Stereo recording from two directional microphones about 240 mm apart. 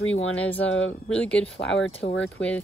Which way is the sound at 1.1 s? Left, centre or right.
Centre.